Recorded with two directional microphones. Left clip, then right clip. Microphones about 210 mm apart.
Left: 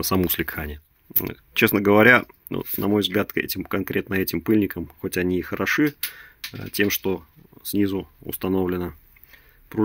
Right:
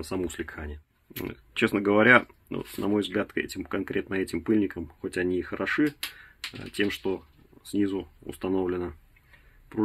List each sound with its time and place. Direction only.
0.0 s speech: 50° left (ahead or behind); by 9.8 s 35° left (ahead or behind)